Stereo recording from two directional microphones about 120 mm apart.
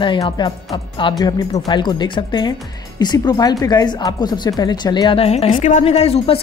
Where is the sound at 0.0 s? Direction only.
40° left (ahead or behind).